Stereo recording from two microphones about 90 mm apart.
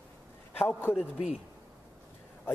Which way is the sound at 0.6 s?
20° left (ahead or behind).